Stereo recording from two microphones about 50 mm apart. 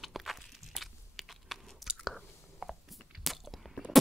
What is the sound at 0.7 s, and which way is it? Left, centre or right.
Biting, centre.